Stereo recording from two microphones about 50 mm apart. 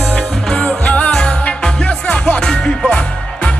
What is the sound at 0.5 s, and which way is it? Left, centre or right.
Music, left.